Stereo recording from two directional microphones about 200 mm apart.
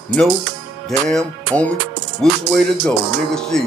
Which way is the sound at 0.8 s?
Centre (ahead or behind).